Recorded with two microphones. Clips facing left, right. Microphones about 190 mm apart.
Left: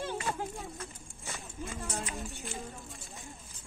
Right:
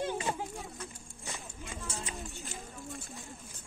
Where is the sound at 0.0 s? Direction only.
15° right (ahead or behind).